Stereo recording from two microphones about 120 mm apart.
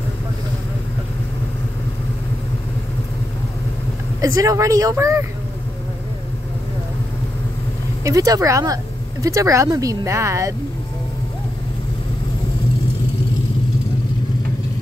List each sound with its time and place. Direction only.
4.2 s speech: 25° right (ahead or behind)
8.0 s speech: 30° right (ahead or behind)